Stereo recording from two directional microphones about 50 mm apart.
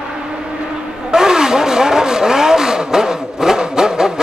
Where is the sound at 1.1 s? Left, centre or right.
Centre.